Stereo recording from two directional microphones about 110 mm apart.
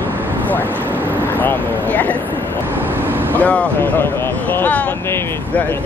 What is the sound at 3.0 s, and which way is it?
Speech, 20° right (ahead or behind).